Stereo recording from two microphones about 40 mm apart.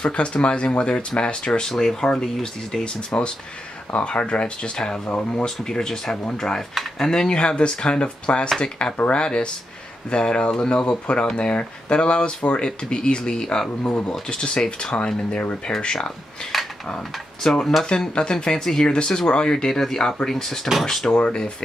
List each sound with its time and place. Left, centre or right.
0.0 s speech: left
3.1 s speech: left
16.5 s cutlery: centre
17.4 s speech: centre
18.9 s speech: left
21.1 s speech: left